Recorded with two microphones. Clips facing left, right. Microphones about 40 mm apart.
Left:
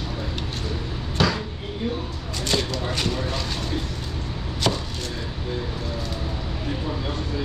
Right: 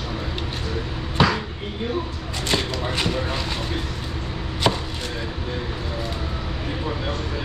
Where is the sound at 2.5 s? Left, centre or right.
Right.